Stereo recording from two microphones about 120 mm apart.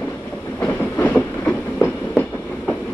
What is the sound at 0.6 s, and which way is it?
Train, 15° left (ahead or behind).